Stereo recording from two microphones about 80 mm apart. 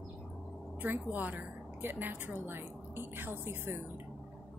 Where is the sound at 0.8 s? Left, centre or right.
Right.